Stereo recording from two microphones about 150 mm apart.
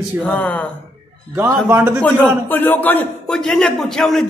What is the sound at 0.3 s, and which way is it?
Speech, 10° left (ahead or behind).